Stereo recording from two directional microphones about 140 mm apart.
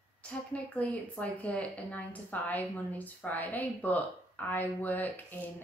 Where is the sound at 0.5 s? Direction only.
10° left (ahead or behind).